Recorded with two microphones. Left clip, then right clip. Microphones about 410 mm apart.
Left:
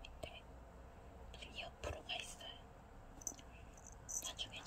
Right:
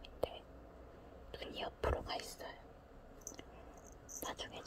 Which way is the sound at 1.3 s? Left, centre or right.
Centre.